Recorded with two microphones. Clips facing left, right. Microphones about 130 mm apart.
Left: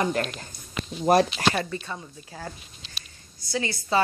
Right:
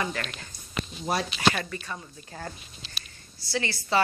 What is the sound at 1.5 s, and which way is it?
Speech, 25° left (ahead or behind).